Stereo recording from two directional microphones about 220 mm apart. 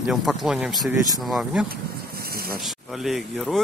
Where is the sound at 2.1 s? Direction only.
45° right (ahead or behind).